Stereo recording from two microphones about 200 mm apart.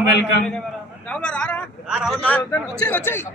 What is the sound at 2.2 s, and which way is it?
A man's voice, 10° left (ahead or behind).